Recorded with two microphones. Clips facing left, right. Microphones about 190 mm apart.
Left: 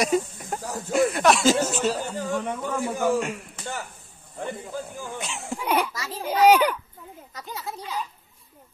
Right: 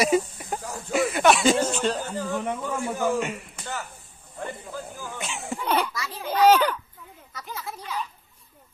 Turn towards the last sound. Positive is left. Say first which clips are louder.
# left 1 dB
turn(degrees=15)  # may be behind; listen again after turning